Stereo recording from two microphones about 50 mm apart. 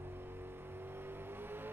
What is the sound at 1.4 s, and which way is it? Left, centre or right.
Vehicle, right.